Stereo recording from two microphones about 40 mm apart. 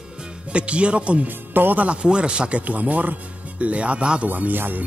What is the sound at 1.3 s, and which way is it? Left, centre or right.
Speech, right.